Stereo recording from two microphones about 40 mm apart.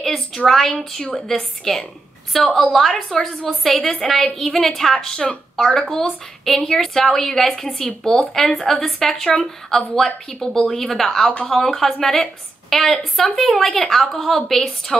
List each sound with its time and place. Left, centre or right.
0.0 s a woman's voice: centre
4.9 s a woman's voice: centre